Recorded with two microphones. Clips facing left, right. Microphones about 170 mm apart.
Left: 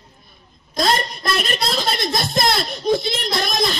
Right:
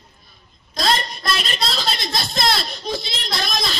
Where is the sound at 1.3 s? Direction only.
50° left (ahead or behind).